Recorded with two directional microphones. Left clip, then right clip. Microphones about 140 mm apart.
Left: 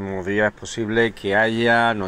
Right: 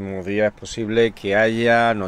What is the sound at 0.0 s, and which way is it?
Speech, 30° right (ahead or behind).